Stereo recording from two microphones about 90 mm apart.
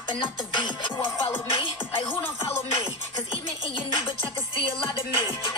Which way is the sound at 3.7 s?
65° left (ahead or behind).